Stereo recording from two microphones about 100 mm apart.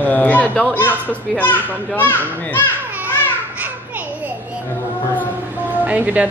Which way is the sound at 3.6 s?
15° right (ahead or behind).